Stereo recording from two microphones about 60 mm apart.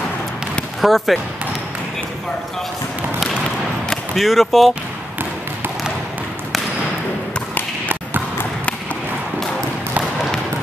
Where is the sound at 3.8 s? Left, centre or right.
Centre.